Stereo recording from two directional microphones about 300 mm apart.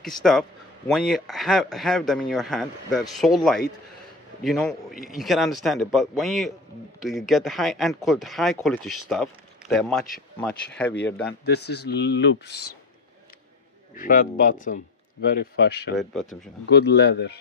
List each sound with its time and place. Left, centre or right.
0.2 s speech: centre
11.4 s speech: left
13.9 s speech: left
16.0 s speech: centre
16.3 s speech: left